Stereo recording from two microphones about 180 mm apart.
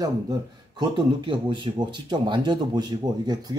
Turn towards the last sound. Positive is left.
turn(degrees=-25)  # may be behind; listen again after turning